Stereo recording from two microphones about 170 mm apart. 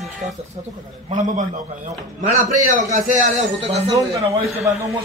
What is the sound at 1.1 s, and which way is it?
A man's voice, 50° right (ahead or behind).